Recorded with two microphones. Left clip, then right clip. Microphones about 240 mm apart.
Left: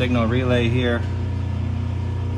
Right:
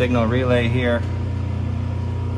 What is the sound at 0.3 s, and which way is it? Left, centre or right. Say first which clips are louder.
Speech: right 2 dB; right.